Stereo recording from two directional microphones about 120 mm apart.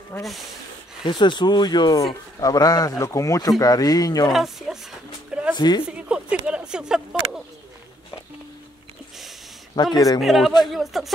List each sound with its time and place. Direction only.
0.1 s speech: 15° left (ahead or behind)
1.0 s speech: 40° left (ahead or behind)
4.3 s speech: centre (ahead or behind)
5.6 s speech: 35° left (ahead or behind)
5.9 s a sound: 10° right (ahead or behind)
9.9 s speech: 30° left (ahead or behind)
10.2 s speech: centre (ahead or behind)